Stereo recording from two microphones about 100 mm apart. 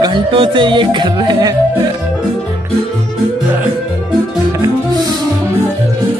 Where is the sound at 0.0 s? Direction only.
60° right (ahead or behind).